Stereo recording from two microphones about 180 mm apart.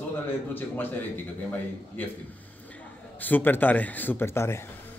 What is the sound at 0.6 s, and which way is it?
Speech, 10° left (ahead or behind).